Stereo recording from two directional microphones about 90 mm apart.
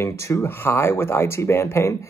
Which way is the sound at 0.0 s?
30° left (ahead or behind).